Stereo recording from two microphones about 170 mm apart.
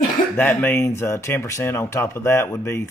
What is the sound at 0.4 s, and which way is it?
Speech, 10° left (ahead or behind).